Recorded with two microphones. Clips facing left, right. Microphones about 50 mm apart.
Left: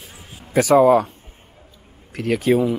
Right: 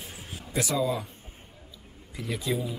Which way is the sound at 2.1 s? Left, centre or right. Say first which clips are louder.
Left 13 dB; left.